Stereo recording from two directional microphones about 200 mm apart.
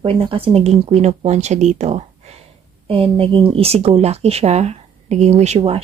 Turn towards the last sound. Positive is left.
turn(degrees=-30)  # may be behind; listen again after turning